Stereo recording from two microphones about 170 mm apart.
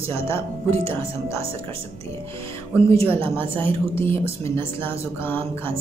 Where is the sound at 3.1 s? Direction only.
15° left (ahead or behind).